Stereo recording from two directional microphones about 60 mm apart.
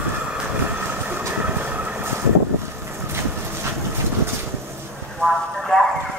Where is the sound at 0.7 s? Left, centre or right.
Right.